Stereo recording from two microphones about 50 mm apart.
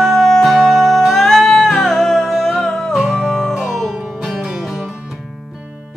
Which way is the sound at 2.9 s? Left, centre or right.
Centre.